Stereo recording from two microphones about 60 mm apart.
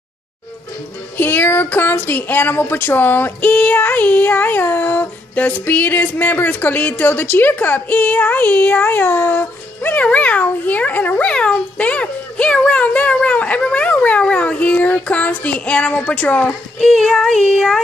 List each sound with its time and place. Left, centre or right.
1.1 s speech: left
9.9 s a child's voice: left
16.8 s child singing: centre